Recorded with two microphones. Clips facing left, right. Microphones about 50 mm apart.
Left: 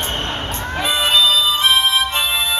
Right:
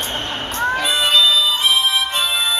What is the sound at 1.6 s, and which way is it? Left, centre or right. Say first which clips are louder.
Music: left 2 dB; left.